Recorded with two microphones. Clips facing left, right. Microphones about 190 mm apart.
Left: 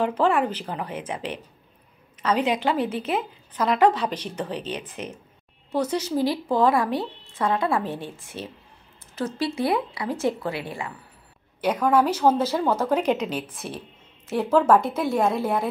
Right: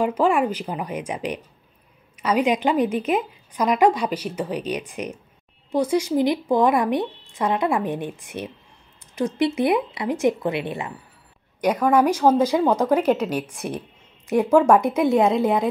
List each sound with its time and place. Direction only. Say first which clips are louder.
0.0 s a woman's voice: right 2 dB; 10° right (ahead or behind)
11.6 s a woman's voice: right 3 dB; 10° right (ahead or behind)